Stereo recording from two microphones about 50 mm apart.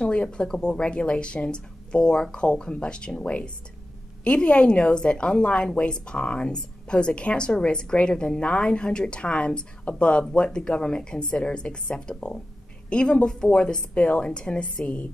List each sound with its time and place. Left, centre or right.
0.0 s a woman's voice: centre